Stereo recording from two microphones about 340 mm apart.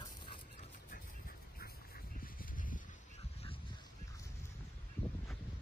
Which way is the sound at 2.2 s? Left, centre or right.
Left.